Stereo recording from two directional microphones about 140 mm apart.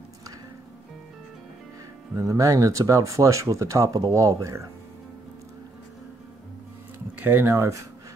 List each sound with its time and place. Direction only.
2.1 s speech: 25° right (ahead or behind)
7.2 s speech: 15° right (ahead or behind)